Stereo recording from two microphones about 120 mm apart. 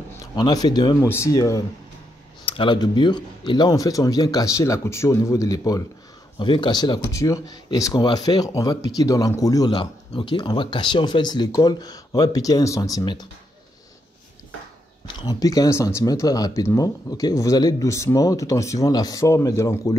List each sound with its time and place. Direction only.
0.2 s speech: 35° left (ahead or behind)
1.0 s speech: 20° left (ahead or behind)
2.4 s speech: 45° left (ahead or behind); by 5.9 s 30° left (ahead or behind)
6.4 s speech: 40° left (ahead or behind)
9.7 s speech: 45° left (ahead or behind)
15.2 s speech: 30° left (ahead or behind)